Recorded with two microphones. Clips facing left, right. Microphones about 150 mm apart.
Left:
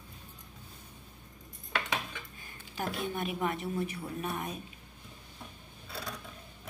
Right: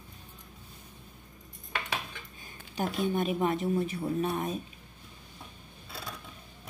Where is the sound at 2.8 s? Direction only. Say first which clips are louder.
Right 5 dB; 20° right (ahead or behind).